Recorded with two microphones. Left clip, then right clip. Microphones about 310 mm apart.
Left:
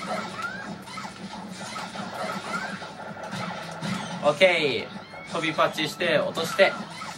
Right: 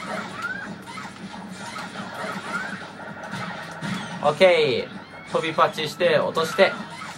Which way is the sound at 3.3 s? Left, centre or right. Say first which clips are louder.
Right 1 dB; centre.